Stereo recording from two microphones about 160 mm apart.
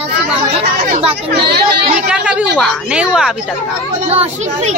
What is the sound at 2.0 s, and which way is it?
A woman's voice, 5° right (ahead or behind).